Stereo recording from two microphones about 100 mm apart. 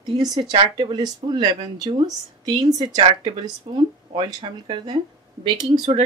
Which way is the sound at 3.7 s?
60° right (ahead or behind).